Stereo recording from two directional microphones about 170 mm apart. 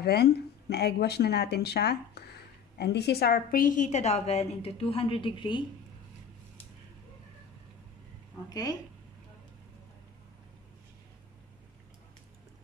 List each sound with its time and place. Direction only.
0.0 s a woman's voice: 70° left (ahead or behind); by 5.7 s 30° left (ahead or behind)
8.5 s speech: 20° left (ahead or behind)